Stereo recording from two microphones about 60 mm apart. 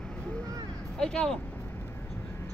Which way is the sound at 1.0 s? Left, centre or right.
Centre.